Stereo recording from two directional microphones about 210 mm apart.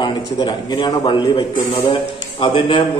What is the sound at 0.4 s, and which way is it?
A man's voice, 20° left (ahead or behind).